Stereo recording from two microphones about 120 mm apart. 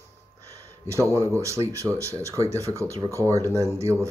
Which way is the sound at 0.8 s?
25° right (ahead or behind).